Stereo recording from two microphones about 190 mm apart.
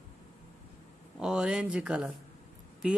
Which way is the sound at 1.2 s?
5° right (ahead or behind).